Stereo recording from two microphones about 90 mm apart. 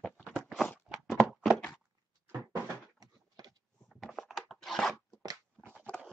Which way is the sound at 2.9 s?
45° right (ahead or behind).